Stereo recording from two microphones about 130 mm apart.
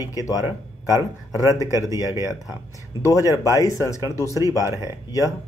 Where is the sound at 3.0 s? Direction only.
25° left (ahead or behind).